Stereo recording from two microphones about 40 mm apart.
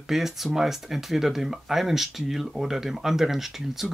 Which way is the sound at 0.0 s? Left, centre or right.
Centre.